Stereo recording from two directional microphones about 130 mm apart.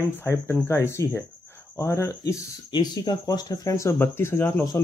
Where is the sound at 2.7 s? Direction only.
35° left (ahead or behind).